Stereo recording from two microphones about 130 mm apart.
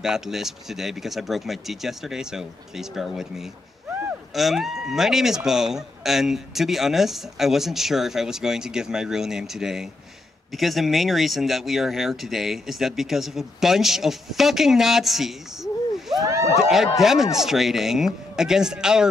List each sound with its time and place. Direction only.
0.0 s speech: 5° right (ahead or behind)
16.2 s a sound: 25° right (ahead or behind)
16.5 s speech: 5° right (ahead or behind)